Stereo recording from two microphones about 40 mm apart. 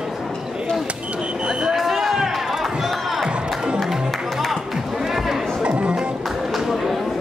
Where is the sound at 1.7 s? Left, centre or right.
Centre.